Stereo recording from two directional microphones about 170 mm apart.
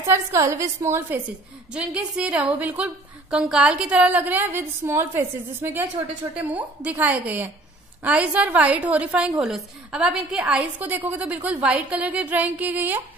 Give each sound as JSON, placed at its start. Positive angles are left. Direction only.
{"t": 0.0, "sound": "a woman's voice", "side_deg": -15}